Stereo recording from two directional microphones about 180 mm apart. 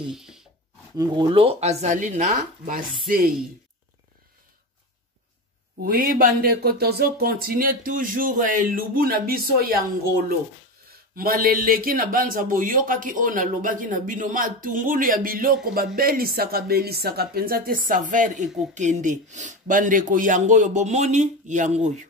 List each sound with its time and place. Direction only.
0.0 s a sound: 5° right (ahead or behind)
0.9 s speech: 20° right (ahead or behind); by 2.8 s 40° right (ahead or behind)
5.9 s speech: 50° right (ahead or behind)